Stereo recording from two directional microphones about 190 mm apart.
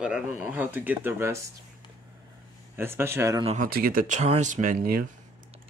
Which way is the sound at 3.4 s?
40° right (ahead or behind).